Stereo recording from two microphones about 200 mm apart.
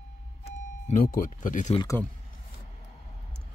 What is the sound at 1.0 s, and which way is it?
Speech, 45° left (ahead or behind).